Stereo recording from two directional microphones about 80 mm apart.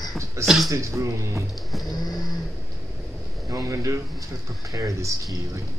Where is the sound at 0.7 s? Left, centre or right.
Right.